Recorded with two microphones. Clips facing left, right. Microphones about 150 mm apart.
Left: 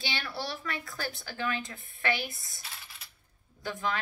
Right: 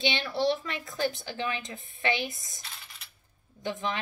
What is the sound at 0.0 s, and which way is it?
A woman's voice, 20° right (ahead or behind).